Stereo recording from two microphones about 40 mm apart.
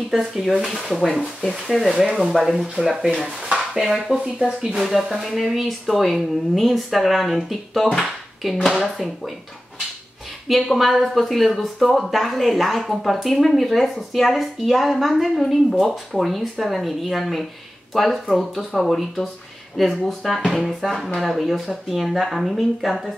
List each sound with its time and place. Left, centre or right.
0.1 s speech: centre
2.0 s speech: centre
4.6 s speech: right
5.3 s speech: centre
10.5 s speech: centre